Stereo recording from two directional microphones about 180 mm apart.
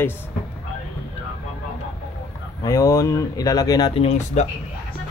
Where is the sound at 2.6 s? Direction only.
20° left (ahead or behind).